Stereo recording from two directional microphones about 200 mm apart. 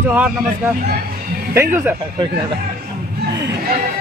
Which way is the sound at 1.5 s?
10° right (ahead or behind).